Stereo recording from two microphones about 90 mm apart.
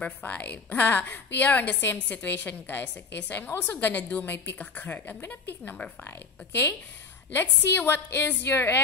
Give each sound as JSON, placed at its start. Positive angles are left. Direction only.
{"t": 0.0, "sound": "a woman's voice", "side_deg": 20}